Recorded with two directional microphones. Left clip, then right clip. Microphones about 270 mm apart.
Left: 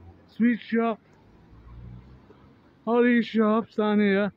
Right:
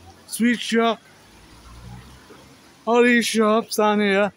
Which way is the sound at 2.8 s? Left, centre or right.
Centre.